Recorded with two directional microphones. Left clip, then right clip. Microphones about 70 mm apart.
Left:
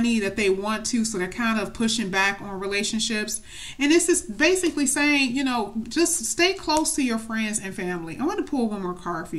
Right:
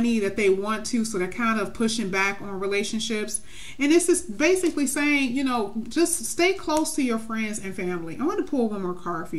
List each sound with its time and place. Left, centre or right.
0.0 s speech: left